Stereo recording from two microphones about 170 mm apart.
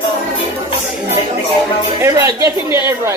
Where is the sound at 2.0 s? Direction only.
20° right (ahead or behind).